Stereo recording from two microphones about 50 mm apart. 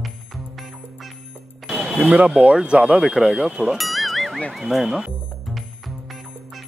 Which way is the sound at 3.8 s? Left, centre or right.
Centre.